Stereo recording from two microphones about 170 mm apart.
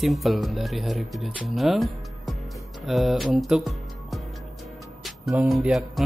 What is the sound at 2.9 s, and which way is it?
Speech, centre (ahead or behind).